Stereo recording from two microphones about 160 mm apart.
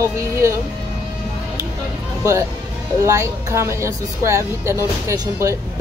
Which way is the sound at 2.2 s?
20° right (ahead or behind).